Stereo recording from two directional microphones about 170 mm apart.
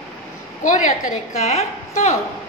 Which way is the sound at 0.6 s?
45° left (ahead or behind).